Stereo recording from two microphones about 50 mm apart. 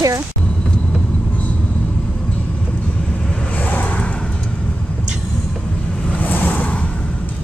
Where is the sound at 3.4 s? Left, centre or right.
Left.